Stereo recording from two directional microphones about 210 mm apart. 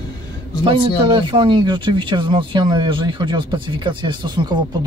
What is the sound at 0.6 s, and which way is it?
Speech, 25° right (ahead or behind).